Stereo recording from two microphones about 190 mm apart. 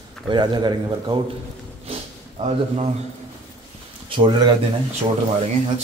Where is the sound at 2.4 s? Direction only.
25° right (ahead or behind).